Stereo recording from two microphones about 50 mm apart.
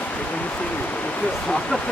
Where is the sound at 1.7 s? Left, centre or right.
Centre.